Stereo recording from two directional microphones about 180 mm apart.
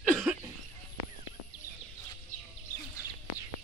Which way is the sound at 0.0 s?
5° right (ahead or behind).